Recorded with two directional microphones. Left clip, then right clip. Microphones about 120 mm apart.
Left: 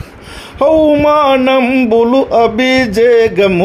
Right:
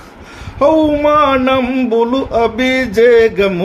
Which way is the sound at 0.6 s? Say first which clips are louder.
Left 2 dB; 45° left (ahead or behind).